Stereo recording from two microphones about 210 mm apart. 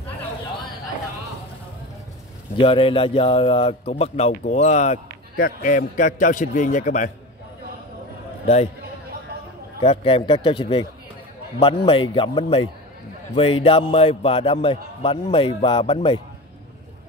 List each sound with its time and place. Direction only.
2.5 s speech: 25° left (ahead or behind)
9.8 s a man's voice: 25° left (ahead or behind)